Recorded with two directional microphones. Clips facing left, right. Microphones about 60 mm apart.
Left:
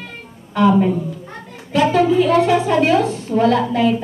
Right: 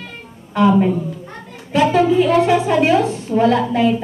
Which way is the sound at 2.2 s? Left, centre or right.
Centre.